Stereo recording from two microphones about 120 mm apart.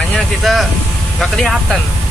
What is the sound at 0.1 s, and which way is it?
Speech, centre (ahead or behind).